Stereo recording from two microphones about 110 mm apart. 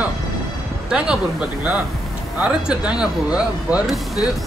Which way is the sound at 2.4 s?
10° right (ahead or behind).